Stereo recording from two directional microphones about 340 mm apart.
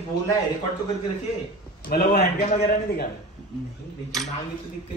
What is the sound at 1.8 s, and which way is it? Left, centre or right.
A man's voice, left.